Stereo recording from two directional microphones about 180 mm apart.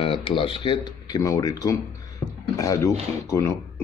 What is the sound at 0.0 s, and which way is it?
Speech, 30° left (ahead or behind).